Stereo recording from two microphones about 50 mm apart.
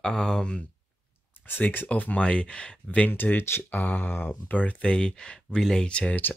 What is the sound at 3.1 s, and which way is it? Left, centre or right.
Speech, left.